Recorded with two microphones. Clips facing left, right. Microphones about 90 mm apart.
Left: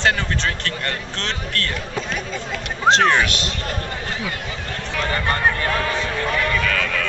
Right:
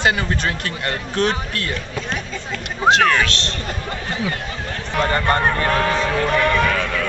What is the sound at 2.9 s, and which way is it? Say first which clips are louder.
Speech: even; 25° left (ahead or behind).